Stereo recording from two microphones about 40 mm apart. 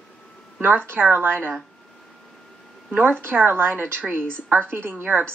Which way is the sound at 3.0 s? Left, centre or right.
Right.